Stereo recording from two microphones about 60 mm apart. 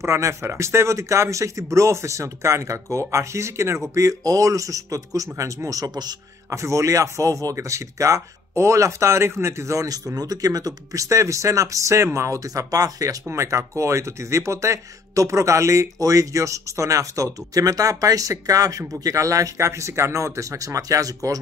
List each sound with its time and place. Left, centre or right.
0.0 s speech: right
3.9 s speech: right
5.7 s speech: right
6.6 s speech: right
9.8 s speech: right
12.4 s speech: right
13.3 s speech: right
19.0 s speech: right